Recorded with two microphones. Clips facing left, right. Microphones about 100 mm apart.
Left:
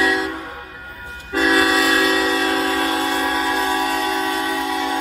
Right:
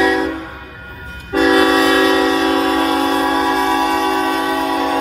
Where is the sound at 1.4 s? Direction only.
30° right (ahead or behind).